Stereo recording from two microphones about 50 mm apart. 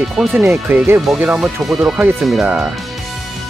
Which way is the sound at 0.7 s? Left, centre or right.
Right.